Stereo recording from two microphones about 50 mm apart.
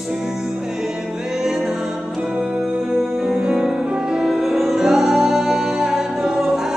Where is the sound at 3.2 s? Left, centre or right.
Centre.